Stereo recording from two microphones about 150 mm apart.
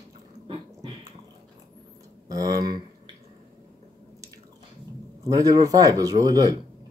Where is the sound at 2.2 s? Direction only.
25° right (ahead or behind).